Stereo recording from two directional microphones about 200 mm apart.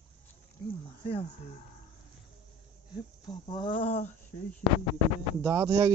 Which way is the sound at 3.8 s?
40° left (ahead or behind).